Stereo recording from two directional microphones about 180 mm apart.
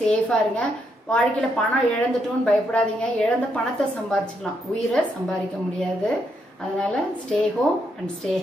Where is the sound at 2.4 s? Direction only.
5° left (ahead or behind).